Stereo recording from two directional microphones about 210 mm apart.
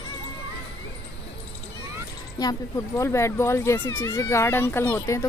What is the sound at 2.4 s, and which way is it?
Speech, 15° left (ahead or behind).